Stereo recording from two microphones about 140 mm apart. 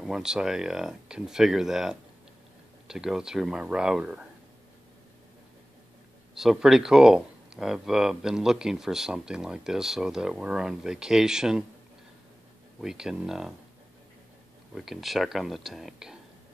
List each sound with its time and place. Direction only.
0.0 s speech: 5° right (ahead or behind)
6.3 s speech: 5° right (ahead or behind)
12.8 s speech: 5° right (ahead or behind)
14.7 s speech: centre (ahead or behind)